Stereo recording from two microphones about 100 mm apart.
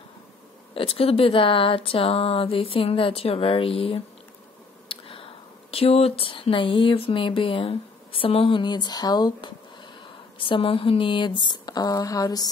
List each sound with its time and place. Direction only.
0.7 s speech: 70° left (ahead or behind); by 9.5 s 45° left (ahead or behind)
10.4 s speech: 60° left (ahead or behind); by 12.4 s 40° left (ahead or behind)